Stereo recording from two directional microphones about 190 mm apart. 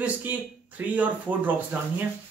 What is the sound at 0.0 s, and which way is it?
Speech, 10° right (ahead or behind).